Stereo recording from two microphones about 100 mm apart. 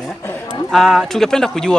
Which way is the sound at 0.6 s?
5° left (ahead or behind).